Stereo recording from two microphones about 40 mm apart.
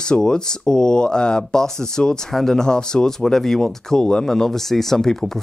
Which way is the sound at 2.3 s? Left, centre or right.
Centre.